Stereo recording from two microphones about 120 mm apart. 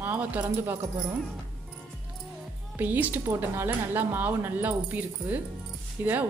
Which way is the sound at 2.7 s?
15° right (ahead or behind).